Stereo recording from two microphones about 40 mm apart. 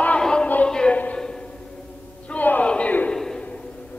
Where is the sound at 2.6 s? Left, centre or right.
Left.